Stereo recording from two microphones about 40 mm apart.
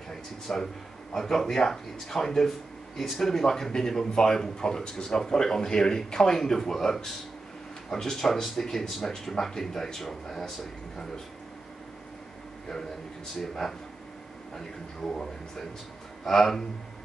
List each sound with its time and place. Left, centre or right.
0.1 s speech: centre
13.4 s speech: centre